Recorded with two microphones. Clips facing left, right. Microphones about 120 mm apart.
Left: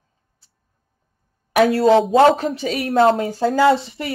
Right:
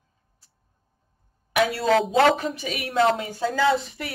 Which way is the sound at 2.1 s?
30° left (ahead or behind).